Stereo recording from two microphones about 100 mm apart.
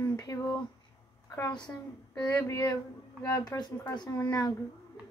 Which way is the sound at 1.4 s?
50° left (ahead or behind).